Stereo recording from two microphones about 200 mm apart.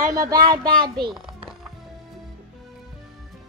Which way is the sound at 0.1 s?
15° right (ahead or behind).